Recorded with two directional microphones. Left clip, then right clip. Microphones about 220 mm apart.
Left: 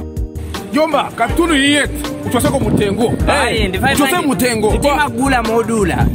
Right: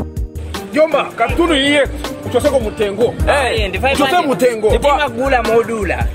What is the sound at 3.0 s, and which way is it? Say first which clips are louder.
Speech: right 3 dB; centre (ahead or behind).